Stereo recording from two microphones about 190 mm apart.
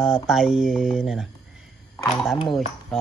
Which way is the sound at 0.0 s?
Centre (ahead or behind).